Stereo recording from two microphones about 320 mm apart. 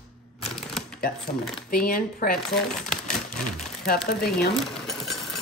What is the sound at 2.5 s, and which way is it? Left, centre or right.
Speech, centre.